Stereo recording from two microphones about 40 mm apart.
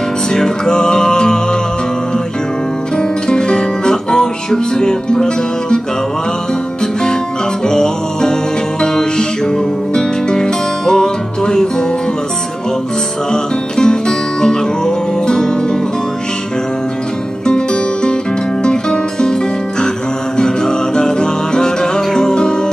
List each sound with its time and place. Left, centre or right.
0.3 s music: centre
3.0 s music: centre
7.6 s music: centre
9.9 s music: centre
13.3 s music: centre
17.5 s music: left
20.3 s music: centre